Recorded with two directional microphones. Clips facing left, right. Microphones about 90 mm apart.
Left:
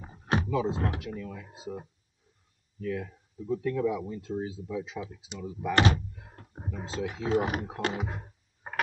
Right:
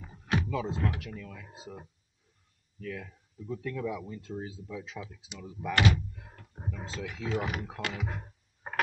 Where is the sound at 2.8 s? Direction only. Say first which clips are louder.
Left 6 dB; 15° left (ahead or behind).